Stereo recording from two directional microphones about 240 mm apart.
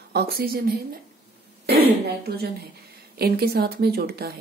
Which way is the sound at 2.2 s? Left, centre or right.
Right.